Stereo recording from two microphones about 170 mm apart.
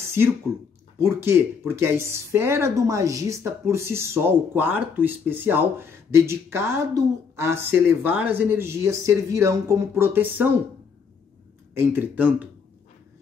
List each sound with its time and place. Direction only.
0.5 s speech: centre (ahead or behind)
0.9 s speech: 15° right (ahead or behind)
11.9 s speech: 10° right (ahead or behind)